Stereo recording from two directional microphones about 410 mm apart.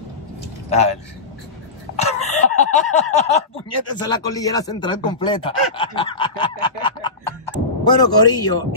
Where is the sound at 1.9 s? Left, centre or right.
Centre.